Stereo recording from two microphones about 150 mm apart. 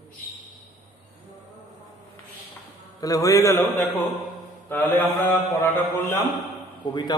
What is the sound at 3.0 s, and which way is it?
A man's voice, 25° left (ahead or behind).